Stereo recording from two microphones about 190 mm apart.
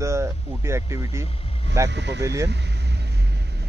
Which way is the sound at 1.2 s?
30° left (ahead or behind).